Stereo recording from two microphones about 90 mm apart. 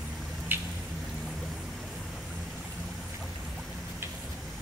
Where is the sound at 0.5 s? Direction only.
20° right (ahead or behind).